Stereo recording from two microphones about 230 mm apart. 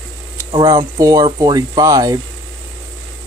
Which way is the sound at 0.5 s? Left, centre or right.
Centre.